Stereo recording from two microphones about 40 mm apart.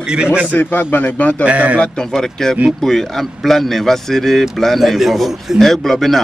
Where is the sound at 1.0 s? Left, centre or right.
Left.